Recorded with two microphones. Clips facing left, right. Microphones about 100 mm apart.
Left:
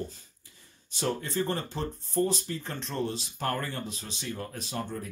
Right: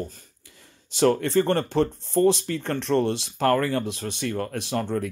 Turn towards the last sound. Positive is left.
turn(degrees=-75)  # may be behind; listen again after turning